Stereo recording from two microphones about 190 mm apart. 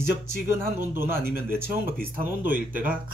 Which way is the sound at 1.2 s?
50° right (ahead or behind).